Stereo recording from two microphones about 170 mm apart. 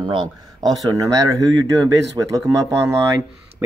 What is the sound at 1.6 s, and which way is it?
Speech, 20° right (ahead or behind).